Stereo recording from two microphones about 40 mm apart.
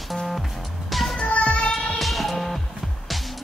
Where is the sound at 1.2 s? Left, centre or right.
Left.